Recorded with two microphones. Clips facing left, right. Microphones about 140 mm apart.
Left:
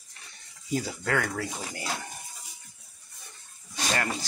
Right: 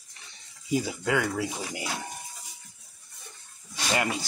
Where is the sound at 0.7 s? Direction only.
10° right (ahead or behind).